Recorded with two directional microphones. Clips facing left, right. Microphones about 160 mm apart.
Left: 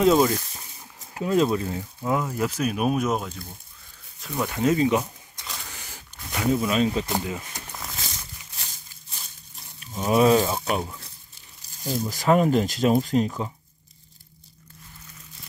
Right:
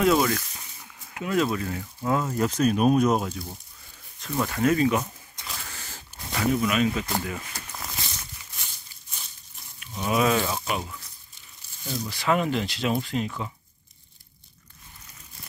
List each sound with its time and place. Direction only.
0.0 s speech: 25° left (ahead or behind)
2.3 s speech: 5° left (ahead or behind)
4.2 s speech: 15° left (ahead or behind)
5.6 s a sound: 15° left (ahead or behind)
7.2 s speech: 15° left (ahead or behind)
10.0 s speech: 35° left (ahead or behind)